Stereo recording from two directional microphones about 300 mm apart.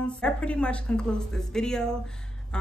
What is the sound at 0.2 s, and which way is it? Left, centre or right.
A woman's voice, centre.